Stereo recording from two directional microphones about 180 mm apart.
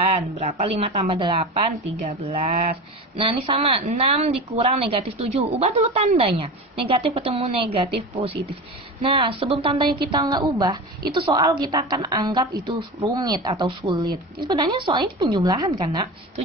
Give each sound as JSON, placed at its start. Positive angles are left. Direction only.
{"t": 0.0, "sound": "a woman's voice", "side_deg": -35}